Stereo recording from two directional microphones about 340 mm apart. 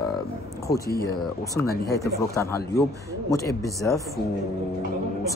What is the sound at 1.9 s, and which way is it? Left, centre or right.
A man's voice, centre.